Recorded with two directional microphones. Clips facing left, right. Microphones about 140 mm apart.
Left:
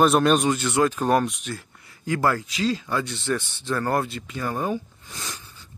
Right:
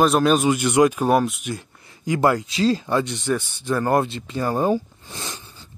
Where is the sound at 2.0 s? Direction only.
15° right (ahead or behind).